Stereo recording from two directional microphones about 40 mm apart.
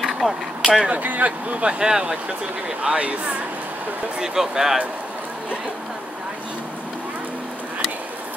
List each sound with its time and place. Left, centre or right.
0.0 s vehicle: centre
0.8 s speech: right
1.8 s speech: centre
2.8 s speech: right
4.2 s speech: centre